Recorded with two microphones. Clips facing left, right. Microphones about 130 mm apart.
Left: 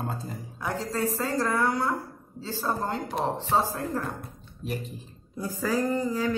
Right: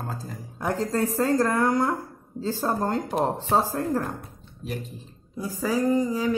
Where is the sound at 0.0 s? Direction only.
Centre (ahead or behind).